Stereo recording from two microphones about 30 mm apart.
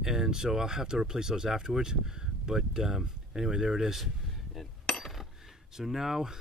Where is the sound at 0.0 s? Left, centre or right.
Centre.